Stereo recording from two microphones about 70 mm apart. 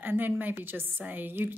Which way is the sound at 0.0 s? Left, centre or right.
Right.